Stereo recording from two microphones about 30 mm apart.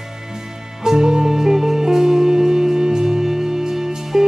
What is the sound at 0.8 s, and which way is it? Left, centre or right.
Music, centre.